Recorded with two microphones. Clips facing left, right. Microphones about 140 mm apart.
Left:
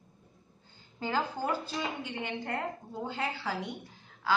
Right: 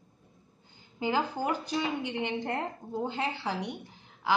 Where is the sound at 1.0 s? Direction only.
15° right (ahead or behind).